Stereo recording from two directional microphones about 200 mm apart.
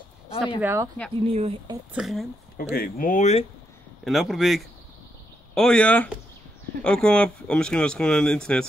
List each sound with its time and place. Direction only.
0.6 s speech: 10° right (ahead or behind)
1.2 s speech: 30° right (ahead or behind)
2.0 s speech: centre (ahead or behind)
2.5 s speech: 50° left (ahead or behind)
4.0 s speech: centre (ahead or behind)